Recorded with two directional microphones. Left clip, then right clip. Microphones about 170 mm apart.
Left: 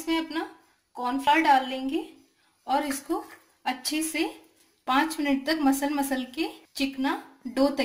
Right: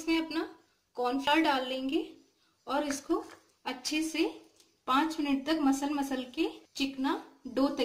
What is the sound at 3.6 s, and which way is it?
A woman's voice, 20° left (ahead or behind).